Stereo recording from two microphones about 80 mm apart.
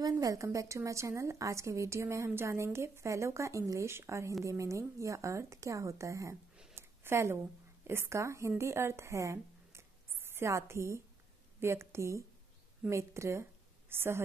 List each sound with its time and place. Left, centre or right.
0.0 s a woman's voice: right
6.7 s a sound: right
7.8 s a woman's voice: right